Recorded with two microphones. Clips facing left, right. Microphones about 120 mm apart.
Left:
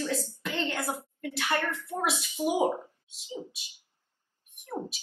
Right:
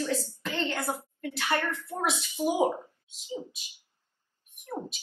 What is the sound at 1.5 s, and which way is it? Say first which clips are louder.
Speech: right 1 dB; 15° left (ahead or behind).